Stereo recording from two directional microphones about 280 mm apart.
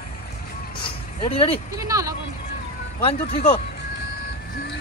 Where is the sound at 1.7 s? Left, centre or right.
Centre.